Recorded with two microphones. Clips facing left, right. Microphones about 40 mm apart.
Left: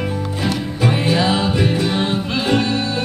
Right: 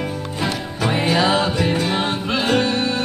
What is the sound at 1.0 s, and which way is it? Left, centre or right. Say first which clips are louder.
Music: right 1 dB; right.